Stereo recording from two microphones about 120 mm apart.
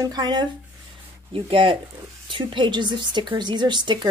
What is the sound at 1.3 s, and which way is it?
A woman's voice, 45° right (ahead or behind).